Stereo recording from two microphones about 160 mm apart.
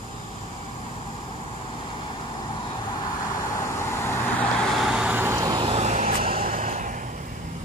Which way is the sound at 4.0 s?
15° left (ahead or behind).